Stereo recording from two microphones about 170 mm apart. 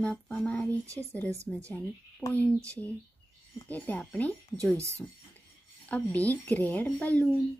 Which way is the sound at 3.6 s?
10° left (ahead or behind).